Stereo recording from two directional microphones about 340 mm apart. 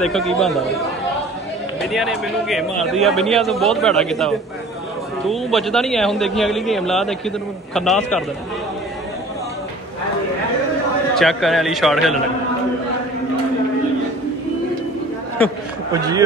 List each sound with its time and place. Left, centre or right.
0.0 s a man's voice: centre
1.8 s a man's voice: centre
11.1 s a man's voice: centre